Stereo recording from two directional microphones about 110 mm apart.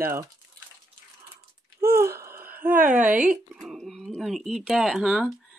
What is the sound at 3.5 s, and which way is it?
Speech, centre (ahead or behind).